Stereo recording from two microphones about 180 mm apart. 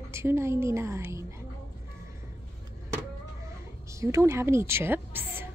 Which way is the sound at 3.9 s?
15° right (ahead or behind).